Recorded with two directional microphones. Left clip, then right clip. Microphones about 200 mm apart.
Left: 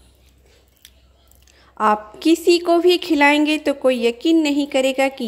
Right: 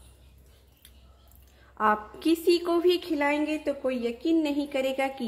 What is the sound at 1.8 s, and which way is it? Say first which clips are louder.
A woman's voice: left 7 dB; 25° left (ahead or behind).